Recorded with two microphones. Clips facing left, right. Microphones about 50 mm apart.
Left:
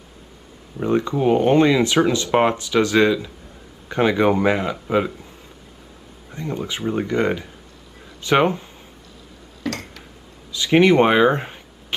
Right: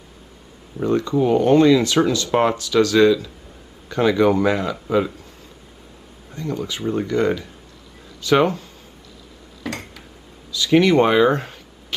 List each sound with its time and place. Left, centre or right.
0.8 s speech: left
6.3 s speech: left
9.7 s a sound: centre
10.5 s speech: left